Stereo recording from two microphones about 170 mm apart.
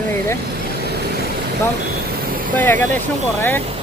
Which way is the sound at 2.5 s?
10° left (ahead or behind).